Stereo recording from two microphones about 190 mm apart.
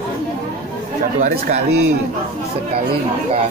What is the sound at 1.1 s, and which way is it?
Speech, 40° right (ahead or behind).